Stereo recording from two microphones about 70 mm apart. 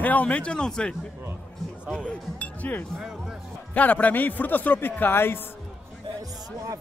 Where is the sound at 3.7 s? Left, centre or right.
Left.